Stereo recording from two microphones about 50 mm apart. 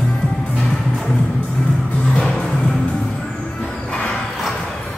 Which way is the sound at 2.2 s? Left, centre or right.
Centre.